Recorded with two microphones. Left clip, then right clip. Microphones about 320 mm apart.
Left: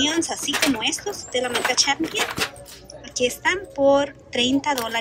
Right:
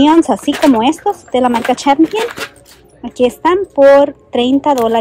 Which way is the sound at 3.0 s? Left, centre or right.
Centre.